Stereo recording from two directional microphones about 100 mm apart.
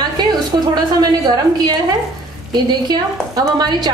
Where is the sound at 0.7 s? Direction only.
40° right (ahead or behind).